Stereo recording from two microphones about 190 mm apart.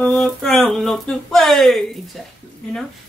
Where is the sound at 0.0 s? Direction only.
Centre (ahead or behind).